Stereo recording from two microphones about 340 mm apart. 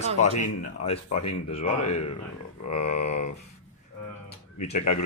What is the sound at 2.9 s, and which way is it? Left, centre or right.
Speech, centre.